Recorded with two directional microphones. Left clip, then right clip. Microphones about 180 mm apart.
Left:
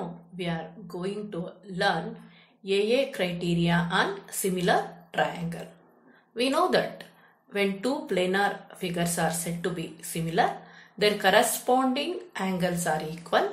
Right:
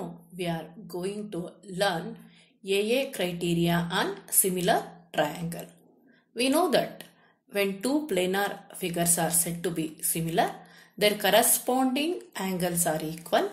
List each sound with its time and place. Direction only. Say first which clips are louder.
1.0 s a woman's voice: left 2 dB; 35° right (ahead or behind)